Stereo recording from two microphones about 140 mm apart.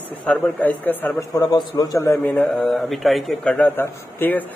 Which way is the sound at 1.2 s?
25° left (ahead or behind).